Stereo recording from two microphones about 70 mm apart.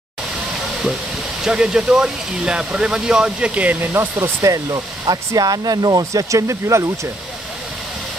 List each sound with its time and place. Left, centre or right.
1.4 s speech: centre
4.2 s speech: right